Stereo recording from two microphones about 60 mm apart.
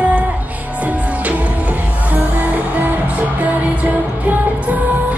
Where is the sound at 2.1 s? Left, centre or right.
Right.